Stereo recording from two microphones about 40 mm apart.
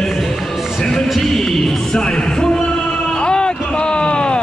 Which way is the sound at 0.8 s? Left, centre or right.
Centre.